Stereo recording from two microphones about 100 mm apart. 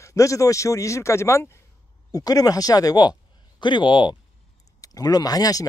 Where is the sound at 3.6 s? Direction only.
50° left (ahead or behind).